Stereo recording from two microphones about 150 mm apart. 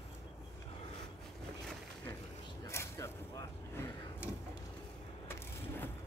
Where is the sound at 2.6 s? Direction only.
15° left (ahead or behind).